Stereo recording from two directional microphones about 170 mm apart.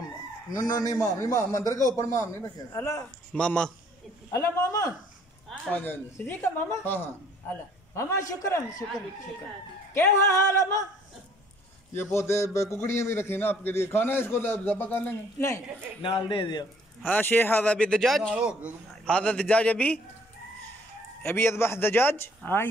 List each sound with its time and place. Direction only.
0.6 s a man's voice: 20° left (ahead or behind)
3.3 s a man's voice: 5° left (ahead or behind)
4.3 s a man's voice: 20° left (ahead or behind)
5.5 s a man's voice: 10° left (ahead or behind)
9.9 s a man's voice: 15° left (ahead or behind)
11.9 s a man's voice: 15° left (ahead or behind)
16.0 s a man's voice: 30° left (ahead or behind)
17.0 s a man's voice: 10° left (ahead or behind); by 18.7 s 5° right (ahead or behind)
19.0 s a man's voice: 5° left (ahead or behind)
21.2 s a man's voice: 15° left (ahead or behind)